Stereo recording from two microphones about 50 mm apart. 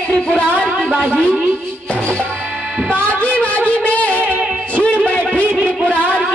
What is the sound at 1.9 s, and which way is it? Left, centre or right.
Music, centre.